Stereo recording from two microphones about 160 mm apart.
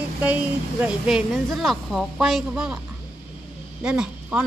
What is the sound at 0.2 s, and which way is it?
A woman's voice, 10° right (ahead or behind).